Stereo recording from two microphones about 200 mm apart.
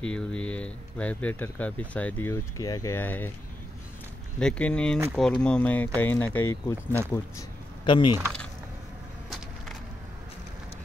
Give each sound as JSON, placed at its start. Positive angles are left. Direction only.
{"t": 0.0, "sound": "speech", "side_deg": 5}
{"t": 4.4, "sound": "speech", "side_deg": 5}